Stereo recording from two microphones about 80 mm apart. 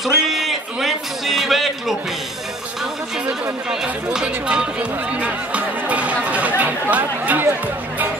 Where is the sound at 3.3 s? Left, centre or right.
Centre.